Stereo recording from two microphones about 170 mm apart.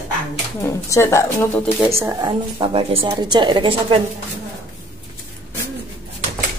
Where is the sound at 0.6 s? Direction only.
15° left (ahead or behind).